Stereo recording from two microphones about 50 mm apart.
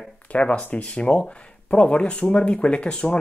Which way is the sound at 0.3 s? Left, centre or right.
Left.